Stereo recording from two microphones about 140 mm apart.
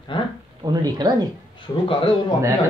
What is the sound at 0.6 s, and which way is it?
Speech, 30° right (ahead or behind).